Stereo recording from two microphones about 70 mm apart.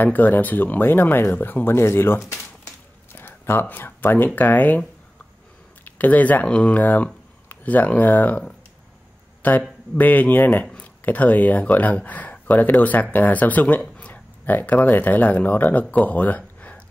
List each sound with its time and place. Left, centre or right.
0.0 s speech: left
3.2 s a sound: left
4.4 s speech: left
5.9 s speech: left
6.8 s speech: left